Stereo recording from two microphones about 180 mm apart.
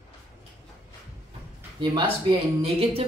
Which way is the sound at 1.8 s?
25° right (ahead or behind).